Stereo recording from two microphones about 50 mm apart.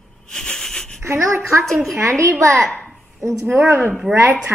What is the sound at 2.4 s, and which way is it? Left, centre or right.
Speech, right.